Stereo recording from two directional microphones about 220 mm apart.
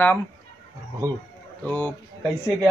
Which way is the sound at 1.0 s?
15° right (ahead or behind).